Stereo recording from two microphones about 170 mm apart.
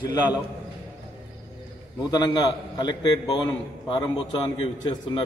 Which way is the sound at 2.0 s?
25° left (ahead or behind).